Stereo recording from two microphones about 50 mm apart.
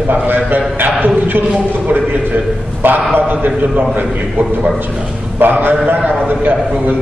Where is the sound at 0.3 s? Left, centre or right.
Right.